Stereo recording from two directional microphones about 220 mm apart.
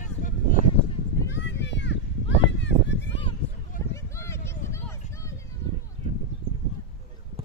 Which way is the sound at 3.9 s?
15° left (ahead or behind).